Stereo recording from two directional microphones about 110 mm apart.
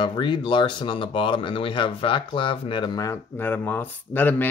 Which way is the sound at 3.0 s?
20° left (ahead or behind).